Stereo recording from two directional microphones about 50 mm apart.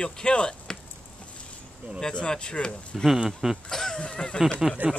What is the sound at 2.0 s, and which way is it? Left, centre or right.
Speech, centre.